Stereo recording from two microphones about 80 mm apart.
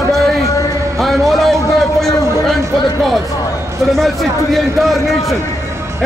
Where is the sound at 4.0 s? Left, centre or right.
Centre.